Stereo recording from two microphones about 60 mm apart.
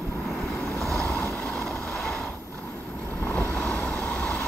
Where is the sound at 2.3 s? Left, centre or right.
Left.